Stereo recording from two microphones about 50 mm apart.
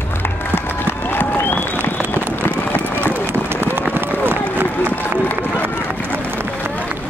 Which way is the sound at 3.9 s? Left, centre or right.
Right.